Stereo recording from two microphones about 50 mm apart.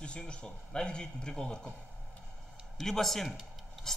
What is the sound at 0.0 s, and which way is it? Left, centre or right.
A man's voice, left.